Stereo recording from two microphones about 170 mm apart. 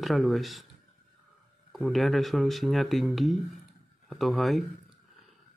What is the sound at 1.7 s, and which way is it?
Speech, centre (ahead or behind).